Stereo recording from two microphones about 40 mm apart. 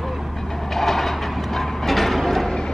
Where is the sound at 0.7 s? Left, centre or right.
Centre.